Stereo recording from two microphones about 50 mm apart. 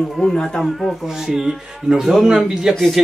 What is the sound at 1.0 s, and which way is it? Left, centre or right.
A man's voice, centre.